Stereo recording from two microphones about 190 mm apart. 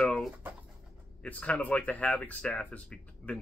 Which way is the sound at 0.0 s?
Centre (ahead or behind).